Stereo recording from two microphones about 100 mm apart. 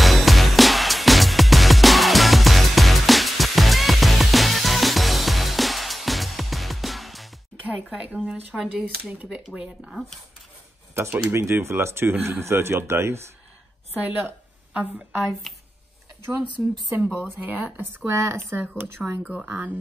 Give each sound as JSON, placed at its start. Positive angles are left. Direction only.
{"t": 0.0, "sound": "music", "side_deg": 0}
{"t": 7.6, "sound": "a woman's voice", "side_deg": -10}
{"t": 9.5, "sound": "speech", "side_deg": 0}
{"t": 11.0, "sound": "speech", "side_deg": -15}
{"t": 11.3, "sound": "speech", "side_deg": -25}
{"t": 16.6, "sound": "speech", "side_deg": -5}